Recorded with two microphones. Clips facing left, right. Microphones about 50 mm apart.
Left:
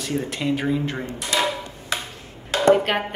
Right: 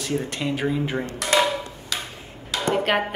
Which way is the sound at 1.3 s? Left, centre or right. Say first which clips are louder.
Right 3 dB; right.